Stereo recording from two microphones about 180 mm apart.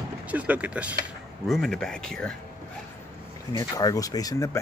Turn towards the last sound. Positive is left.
turn(degrees=20)  # may be behind; listen again after turning